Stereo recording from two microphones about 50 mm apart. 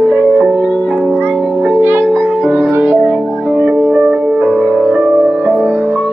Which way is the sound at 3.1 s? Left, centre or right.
Centre.